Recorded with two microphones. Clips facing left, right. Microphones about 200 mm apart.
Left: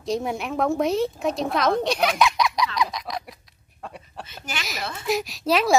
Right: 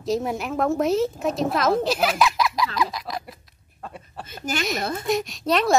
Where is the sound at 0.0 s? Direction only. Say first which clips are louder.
Right 1 dB; centre (ahead or behind).